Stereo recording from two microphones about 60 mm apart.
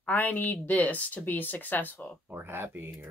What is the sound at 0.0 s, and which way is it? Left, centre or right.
Speech, left.